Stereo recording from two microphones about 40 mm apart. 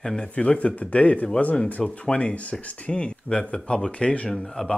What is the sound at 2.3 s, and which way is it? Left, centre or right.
A man's voice, left.